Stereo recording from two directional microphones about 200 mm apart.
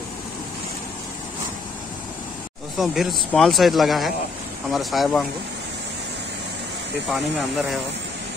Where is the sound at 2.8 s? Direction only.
Centre (ahead or behind).